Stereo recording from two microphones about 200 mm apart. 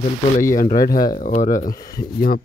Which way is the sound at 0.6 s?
45° left (ahead or behind).